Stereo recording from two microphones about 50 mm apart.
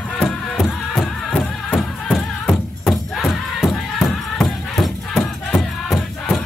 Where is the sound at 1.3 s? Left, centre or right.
Left.